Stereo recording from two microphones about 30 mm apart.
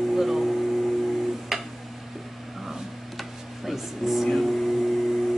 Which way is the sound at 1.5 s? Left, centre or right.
Centre.